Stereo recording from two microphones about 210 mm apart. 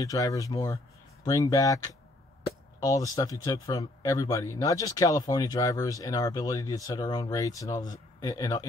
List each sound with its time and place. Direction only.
0.0 s speech: 15° left (ahead or behind)